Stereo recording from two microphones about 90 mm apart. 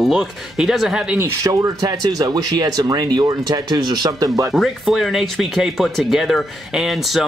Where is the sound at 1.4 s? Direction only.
40° right (ahead or behind).